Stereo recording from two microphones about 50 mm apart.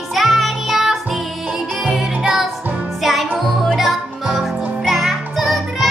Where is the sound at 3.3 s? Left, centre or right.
Centre.